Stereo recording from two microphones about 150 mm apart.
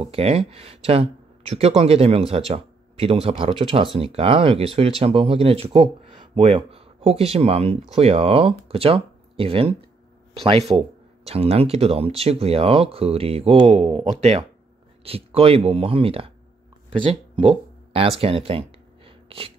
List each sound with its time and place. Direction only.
0.0 s speech: 40° right (ahead or behind)
10.8 s speech: 40° right (ahead or behind)
16.9 s a sound: 35° right (ahead or behind)